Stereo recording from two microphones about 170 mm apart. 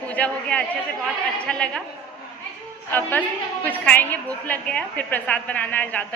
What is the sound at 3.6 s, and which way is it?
A woman's voice, 10° left (ahead or behind).